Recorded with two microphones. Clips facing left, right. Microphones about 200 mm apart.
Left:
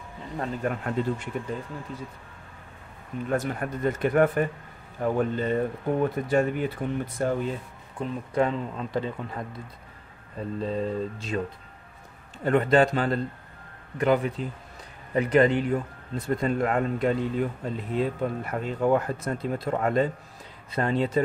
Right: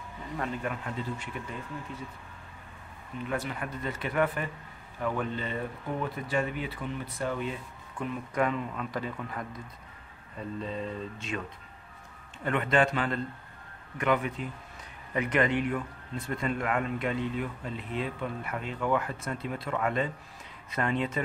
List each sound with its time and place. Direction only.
0.4 s speech: 40° left (ahead or behind)
3.3 s speech: 45° left (ahead or behind)
8.0 s speech: 30° left (ahead or behind)
10.6 s speech: 35° left (ahead or behind)
12.4 s speech: 35° left (ahead or behind)